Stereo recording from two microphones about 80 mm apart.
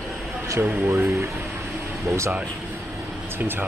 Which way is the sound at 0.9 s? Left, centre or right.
Right.